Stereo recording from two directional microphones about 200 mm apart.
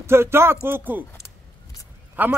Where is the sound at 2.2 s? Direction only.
10° right (ahead or behind).